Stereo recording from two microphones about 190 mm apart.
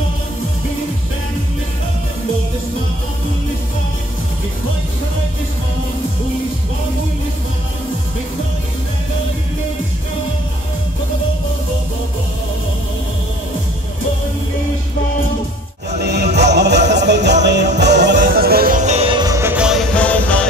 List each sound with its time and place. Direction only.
16.0 s music: 60° right (ahead or behind)
18.1 s music: 50° right (ahead or behind); by 19.8 s 5° right (ahead or behind)
20.0 s music: 5° left (ahead or behind)